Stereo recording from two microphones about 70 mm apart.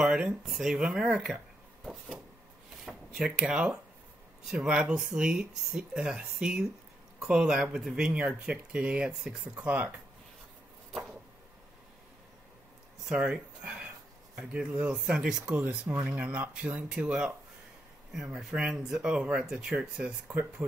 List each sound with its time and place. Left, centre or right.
0.0 s a sound: centre
0.5 s speech: centre
3.1 s speech: centre
9.6 s speech: right
13.0 s speech: centre
14.7 s speech: right
15.0 s speech: centre
20.2 s speech: right